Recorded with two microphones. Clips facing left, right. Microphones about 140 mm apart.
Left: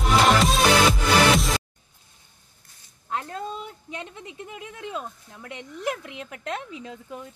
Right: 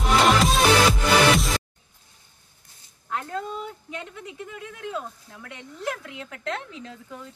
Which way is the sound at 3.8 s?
20° left (ahead or behind).